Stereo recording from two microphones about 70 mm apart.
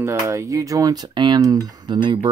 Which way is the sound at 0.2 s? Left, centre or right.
Right.